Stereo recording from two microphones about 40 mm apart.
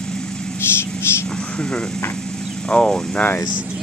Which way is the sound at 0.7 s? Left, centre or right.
Left.